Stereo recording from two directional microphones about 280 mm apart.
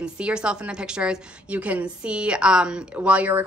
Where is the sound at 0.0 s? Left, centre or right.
Centre.